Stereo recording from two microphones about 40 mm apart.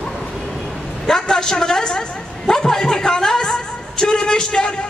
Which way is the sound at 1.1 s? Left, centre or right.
Centre.